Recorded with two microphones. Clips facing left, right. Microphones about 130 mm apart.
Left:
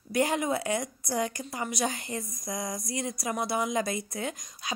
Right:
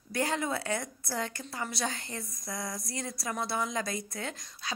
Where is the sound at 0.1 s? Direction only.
15° left (ahead or behind).